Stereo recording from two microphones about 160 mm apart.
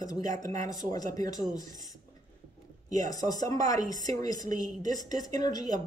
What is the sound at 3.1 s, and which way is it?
Speech, 25° left (ahead or behind).